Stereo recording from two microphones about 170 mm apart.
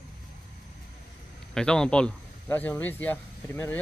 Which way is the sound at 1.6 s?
5° left (ahead or behind).